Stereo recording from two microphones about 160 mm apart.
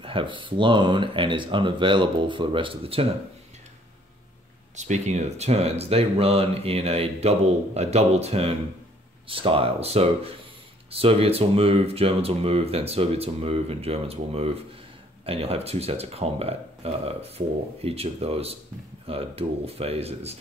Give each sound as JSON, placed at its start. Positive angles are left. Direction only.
{"t": 0.0, "sound": "speech", "side_deg": -30}
{"t": 4.7, "sound": "speech", "side_deg": -45}